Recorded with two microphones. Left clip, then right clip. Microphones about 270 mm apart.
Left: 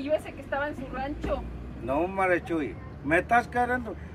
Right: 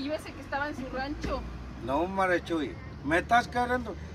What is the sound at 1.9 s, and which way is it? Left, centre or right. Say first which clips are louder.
Speech: left 2 dB; centre.